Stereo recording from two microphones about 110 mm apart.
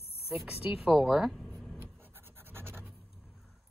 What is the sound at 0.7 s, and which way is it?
Speech, 10° right (ahead or behind).